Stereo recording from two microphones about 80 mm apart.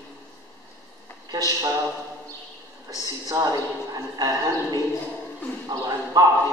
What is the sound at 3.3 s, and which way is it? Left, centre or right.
A woman's voice, right.